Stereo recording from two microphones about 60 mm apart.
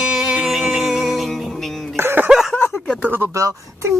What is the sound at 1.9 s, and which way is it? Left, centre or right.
Cough, right.